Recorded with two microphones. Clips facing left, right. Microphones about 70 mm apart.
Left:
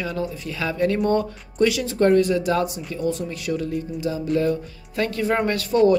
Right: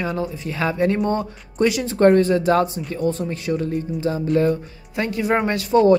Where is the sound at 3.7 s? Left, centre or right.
Right.